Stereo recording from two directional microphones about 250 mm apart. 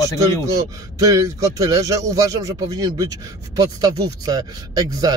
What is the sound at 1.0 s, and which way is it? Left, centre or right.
Speech, centre.